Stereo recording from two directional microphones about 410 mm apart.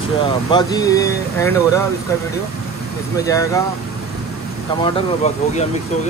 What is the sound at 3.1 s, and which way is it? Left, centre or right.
Speech, centre.